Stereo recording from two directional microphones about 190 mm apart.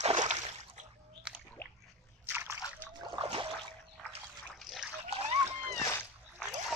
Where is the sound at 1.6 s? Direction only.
15° left (ahead or behind).